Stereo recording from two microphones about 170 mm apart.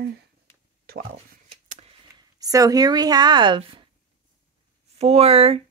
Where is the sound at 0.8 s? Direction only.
60° right (ahead or behind).